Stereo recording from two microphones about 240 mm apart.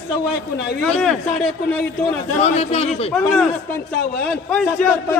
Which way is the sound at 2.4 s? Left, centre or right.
Left.